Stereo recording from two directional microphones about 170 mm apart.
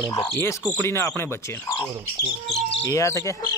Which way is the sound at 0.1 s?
15° left (ahead or behind).